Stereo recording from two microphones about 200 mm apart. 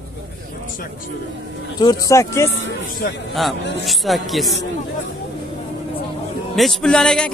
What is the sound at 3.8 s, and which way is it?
Speech, centre (ahead or behind).